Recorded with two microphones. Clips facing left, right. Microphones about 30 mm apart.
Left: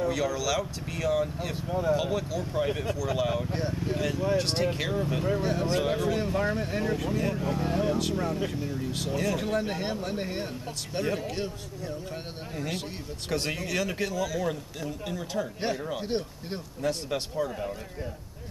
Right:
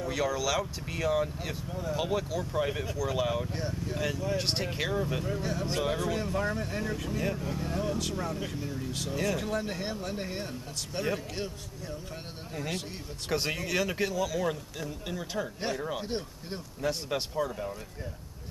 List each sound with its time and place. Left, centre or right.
0.1 s speech: centre
1.7 s speech: left
2.0 s speech: centre
3.4 s speech: centre
4.4 s speech: centre
5.2 s speech: centre
5.7 s speech: centre
9.5 s speech: centre
12.5 s speech: centre
15.6 s speech: centre
16.8 s speech: centre
17.5 s speech: centre